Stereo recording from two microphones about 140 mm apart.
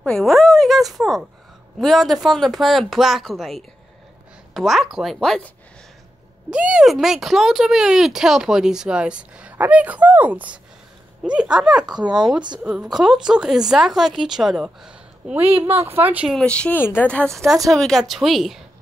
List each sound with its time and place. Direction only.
0.0 s a sound: 5° left (ahead or behind)
1.8 s speech: centre (ahead or behind)
6.5 s speech: 5° right (ahead or behind)
16.3 s speech: 5° left (ahead or behind)